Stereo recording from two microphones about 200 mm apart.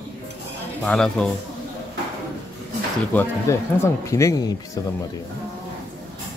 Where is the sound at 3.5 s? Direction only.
15° left (ahead or behind).